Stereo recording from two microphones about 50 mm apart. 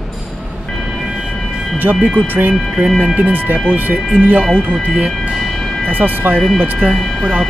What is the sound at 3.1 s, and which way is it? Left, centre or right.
Speech, right.